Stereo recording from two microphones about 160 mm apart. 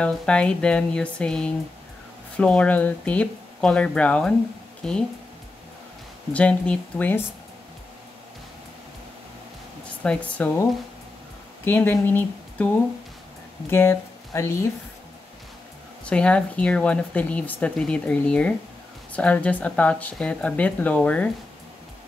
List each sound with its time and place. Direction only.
0.0 s speech: 5° left (ahead or behind)
6.3 s speech: 5° left (ahead or behind)
9.8 s speech: 5° left (ahead or behind)
13.7 s speech: 15° left (ahead or behind)
16.1 s speech: 5° left (ahead or behind)